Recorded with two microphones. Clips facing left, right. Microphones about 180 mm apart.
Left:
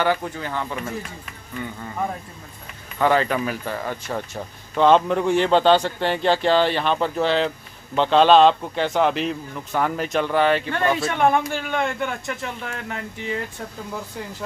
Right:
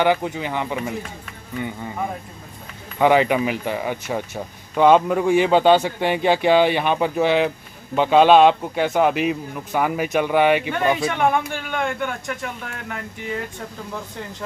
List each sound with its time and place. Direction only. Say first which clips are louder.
0.0 s speech: right 3 dB; 15° right (ahead or behind)
3.0 s speech: right 3 dB; 15° right (ahead or behind)
11.0 s speech: even; centre (ahead or behind)